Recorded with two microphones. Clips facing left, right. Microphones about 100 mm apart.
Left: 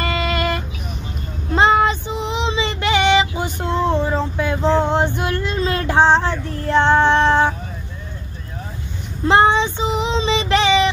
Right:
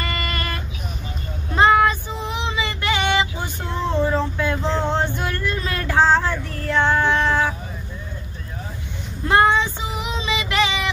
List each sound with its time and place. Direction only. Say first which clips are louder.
0.1 s vehicle: left 7 dB; 20° left (ahead or behind)
1.5 s child singing: left 1 dB; 20° left (ahead or behind)
9.2 s child singing: left 3 dB; 25° left (ahead or behind)